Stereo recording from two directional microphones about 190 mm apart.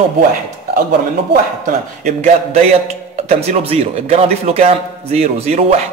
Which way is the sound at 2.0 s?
35° right (ahead or behind).